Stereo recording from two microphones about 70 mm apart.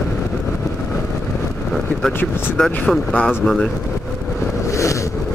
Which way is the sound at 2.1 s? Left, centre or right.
Left.